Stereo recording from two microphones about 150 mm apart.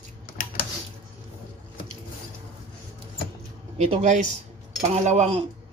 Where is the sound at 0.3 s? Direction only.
75° left (ahead or behind).